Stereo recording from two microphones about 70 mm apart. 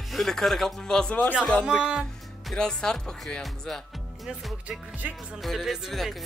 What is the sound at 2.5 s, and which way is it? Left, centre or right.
Speech, centre.